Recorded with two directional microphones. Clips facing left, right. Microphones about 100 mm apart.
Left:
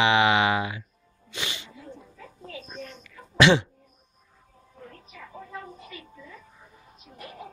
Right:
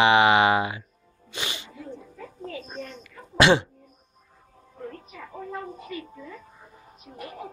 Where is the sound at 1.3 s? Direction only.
35° right (ahead or behind).